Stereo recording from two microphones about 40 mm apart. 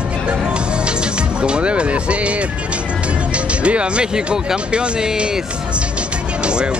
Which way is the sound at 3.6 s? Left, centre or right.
Right.